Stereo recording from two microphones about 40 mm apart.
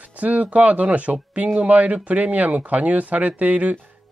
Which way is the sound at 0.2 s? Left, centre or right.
Right.